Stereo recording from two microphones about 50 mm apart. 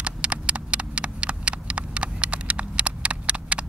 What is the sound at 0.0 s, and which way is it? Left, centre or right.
Clip-clop, right.